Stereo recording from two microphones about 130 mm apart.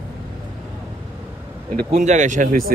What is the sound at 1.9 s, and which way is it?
Speech, 65° right (ahead or behind).